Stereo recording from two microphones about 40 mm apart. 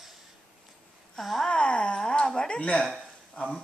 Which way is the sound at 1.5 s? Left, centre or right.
Left.